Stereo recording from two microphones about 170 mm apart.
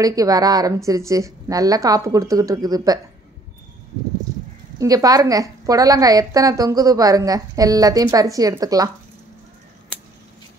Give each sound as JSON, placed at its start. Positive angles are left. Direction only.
{"t": 0.0, "sound": "a woman's voice", "side_deg": -20}
{"t": 4.7, "sound": "a woman's voice", "side_deg": -20}